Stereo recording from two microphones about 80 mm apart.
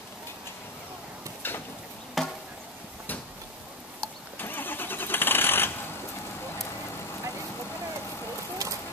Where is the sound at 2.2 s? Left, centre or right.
Centre.